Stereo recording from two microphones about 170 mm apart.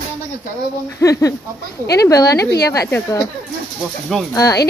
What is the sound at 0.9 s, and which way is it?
Speech, 20° left (ahead or behind).